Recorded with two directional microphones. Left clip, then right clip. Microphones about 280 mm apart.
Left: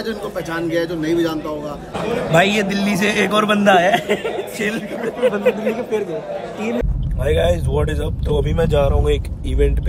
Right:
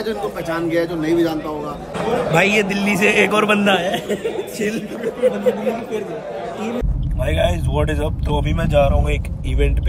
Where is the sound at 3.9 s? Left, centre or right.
Left.